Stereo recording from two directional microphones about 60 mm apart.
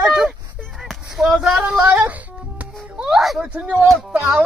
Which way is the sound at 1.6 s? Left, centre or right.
Right.